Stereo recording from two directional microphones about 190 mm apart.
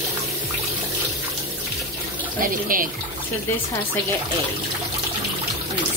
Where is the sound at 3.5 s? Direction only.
10° left (ahead or behind).